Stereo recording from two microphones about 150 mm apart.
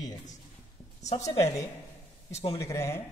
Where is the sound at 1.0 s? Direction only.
50° left (ahead or behind).